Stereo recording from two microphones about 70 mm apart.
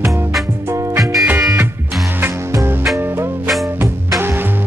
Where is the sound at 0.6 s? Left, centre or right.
Right.